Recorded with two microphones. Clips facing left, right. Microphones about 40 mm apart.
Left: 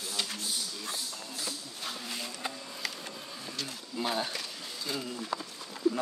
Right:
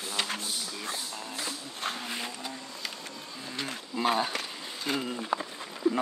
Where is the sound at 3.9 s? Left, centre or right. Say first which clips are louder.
Right 5 dB; right.